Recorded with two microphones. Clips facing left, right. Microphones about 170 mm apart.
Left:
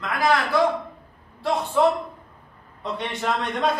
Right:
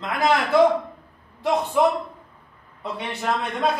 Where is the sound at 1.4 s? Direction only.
15° right (ahead or behind).